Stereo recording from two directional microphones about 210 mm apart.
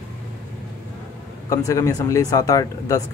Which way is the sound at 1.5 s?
15° left (ahead or behind).